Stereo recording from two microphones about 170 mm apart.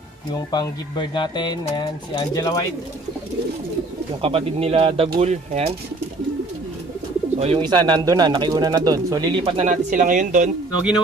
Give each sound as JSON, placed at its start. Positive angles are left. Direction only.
{"t": 0.3, "sound": "speech", "side_deg": 25}
{"t": 4.2, "sound": "speech", "side_deg": -35}
{"t": 7.3, "sound": "speech", "side_deg": -35}